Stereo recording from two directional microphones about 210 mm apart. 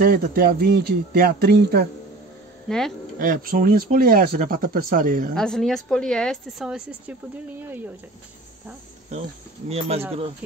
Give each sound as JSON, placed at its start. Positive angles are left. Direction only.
{"t": 0.0, "sound": "speech", "side_deg": -45}
{"t": 2.7, "sound": "speech", "side_deg": 0}
{"t": 3.2, "sound": "speech", "side_deg": -45}
{"t": 5.3, "sound": "speech", "side_deg": 5}
{"t": 9.7, "sound": "speech", "side_deg": -30}